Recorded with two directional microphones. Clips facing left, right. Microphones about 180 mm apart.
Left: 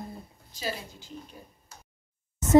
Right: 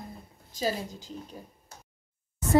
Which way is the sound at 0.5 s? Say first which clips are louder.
Right 5 dB; 40° right (ahead or behind).